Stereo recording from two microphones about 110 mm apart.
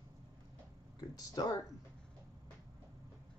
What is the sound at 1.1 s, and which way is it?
Speech, 35° left (ahead or behind).